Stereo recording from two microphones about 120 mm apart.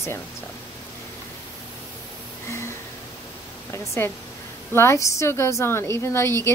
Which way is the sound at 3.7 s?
25° left (ahead or behind).